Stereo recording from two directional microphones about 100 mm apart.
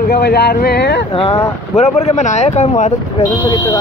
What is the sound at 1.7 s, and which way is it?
Speech, 90° left.